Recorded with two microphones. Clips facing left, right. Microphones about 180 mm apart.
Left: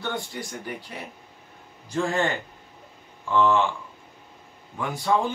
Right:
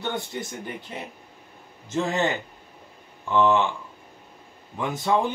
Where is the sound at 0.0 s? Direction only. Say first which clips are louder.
Right 1 dB; 20° right (ahead or behind).